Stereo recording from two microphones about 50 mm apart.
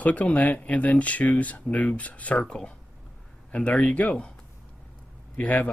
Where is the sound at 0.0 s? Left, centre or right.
Left.